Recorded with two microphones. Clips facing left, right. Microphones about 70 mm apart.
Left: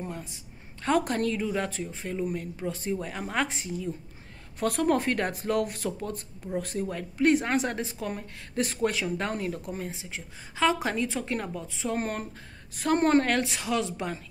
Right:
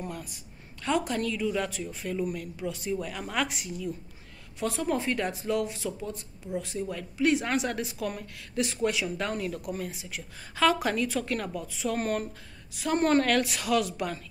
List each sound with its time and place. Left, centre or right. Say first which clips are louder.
0.0 s a sound: even; left
0.8 s speech: left 3 dB; left
4.6 s speech: left 4 dB; left
12.7 s speech: left 3 dB; left
13.0 s speech: right 1 dB; left